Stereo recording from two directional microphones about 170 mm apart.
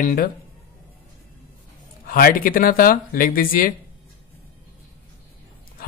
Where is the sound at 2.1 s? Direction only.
60° left (ahead or behind).